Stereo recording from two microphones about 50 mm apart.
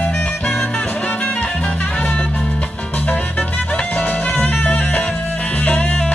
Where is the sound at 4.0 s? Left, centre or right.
Left.